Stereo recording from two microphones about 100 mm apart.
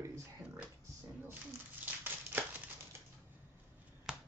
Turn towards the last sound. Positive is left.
turn(degrees=-5)  # may be behind; listen again after turning